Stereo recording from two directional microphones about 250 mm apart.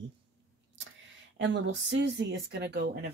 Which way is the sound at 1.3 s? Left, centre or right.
Right.